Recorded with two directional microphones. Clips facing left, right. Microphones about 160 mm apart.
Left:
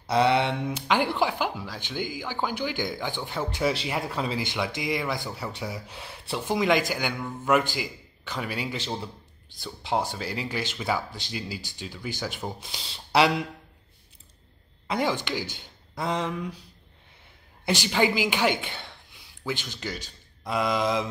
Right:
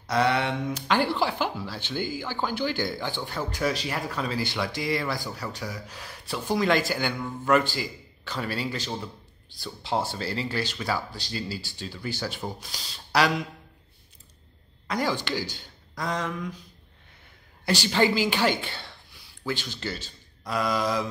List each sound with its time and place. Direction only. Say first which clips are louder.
0.0 s speech: left 2 dB; 25° left (ahead or behind)
7.2 s a man's voice: right 1 dB; centre (ahead or behind)
7.4 s speech: right 1 dB; 15° left (ahead or behind)
14.9 s speech: left 1 dB; 20° left (ahead or behind)
17.6 s speech: right 1 dB; 20° left (ahead or behind)